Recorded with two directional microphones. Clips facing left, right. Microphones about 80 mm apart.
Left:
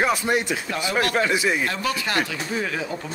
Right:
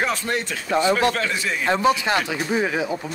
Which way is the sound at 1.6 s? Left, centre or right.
Right.